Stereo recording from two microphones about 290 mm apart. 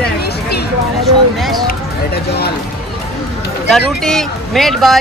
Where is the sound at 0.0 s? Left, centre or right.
Left.